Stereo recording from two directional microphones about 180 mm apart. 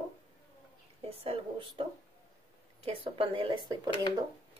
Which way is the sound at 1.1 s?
30° right (ahead or behind).